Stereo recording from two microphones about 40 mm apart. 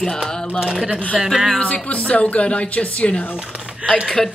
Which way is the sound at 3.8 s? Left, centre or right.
Right.